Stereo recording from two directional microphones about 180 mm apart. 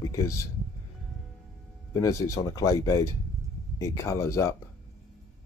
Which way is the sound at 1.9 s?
20° left (ahead or behind).